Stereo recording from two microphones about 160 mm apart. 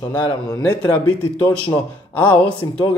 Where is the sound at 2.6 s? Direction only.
25° left (ahead or behind).